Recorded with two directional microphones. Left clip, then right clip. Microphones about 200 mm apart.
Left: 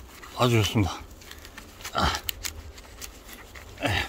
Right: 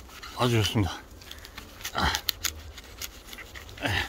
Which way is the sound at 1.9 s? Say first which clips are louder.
Left 2 dB; 15° left (ahead or behind).